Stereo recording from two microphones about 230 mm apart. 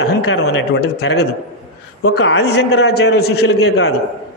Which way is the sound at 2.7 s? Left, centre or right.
Left.